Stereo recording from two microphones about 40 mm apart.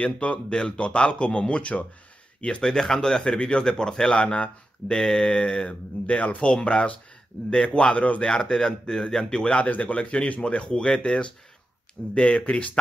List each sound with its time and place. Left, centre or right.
0.0 s speech: left
2.6 s speech: centre
4.1 s speech: left
8.3 s speech: left
9.7 s speech: left